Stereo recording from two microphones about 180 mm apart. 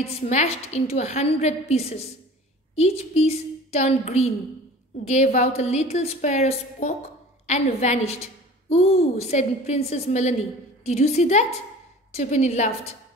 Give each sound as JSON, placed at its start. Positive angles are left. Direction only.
{"t": 0.0, "sound": "a woman's voice", "side_deg": 35}